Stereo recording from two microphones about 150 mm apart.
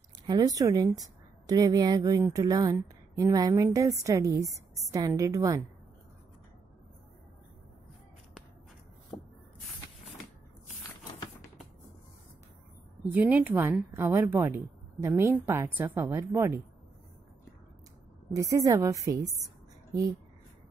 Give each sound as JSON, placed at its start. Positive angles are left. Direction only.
{"t": 0.3, "sound": "a woman's voice", "side_deg": -25}
{"t": 9.1, "sound": "a sound", "side_deg": 10}
{"t": 13.1, "sound": "a woman's voice", "side_deg": -10}
{"t": 18.4, "sound": "a woman's voice", "side_deg": -20}